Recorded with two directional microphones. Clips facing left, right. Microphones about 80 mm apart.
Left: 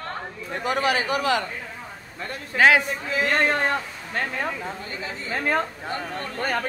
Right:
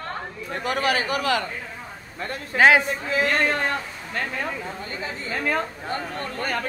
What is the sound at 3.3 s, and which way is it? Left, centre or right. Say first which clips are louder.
A man's voice: left 4 dB; left.